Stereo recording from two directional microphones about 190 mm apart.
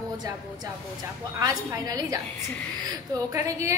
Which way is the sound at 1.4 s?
20° right (ahead or behind).